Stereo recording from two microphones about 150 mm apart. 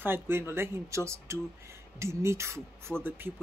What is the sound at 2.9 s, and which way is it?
Speech, 5° left (ahead or behind).